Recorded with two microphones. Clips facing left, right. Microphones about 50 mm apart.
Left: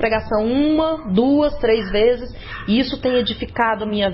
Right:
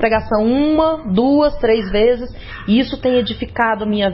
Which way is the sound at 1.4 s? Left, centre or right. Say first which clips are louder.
Right 3 dB; right.